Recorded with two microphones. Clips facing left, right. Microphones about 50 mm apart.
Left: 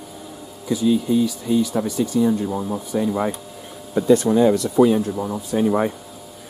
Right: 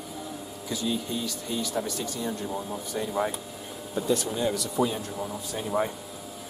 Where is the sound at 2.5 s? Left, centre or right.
Left.